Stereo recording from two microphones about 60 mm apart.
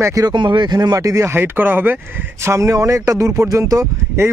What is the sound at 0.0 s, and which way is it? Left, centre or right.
Speech, right.